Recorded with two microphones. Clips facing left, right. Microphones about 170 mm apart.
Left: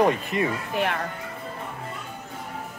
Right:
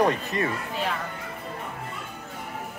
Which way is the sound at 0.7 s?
65° left (ahead or behind).